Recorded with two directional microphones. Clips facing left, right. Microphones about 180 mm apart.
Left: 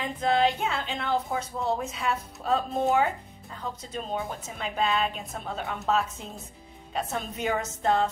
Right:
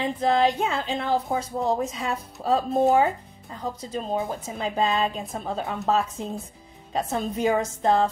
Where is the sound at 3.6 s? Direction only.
35° right (ahead or behind).